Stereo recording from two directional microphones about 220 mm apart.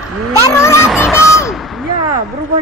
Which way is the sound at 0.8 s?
5° right (ahead or behind).